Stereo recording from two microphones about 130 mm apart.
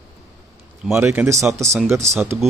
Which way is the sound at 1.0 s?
20° right (ahead or behind).